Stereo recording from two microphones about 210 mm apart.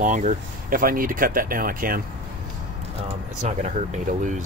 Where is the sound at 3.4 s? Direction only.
35° right (ahead or behind).